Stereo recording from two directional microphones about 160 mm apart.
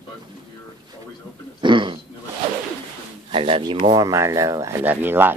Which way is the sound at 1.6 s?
30° right (ahead or behind).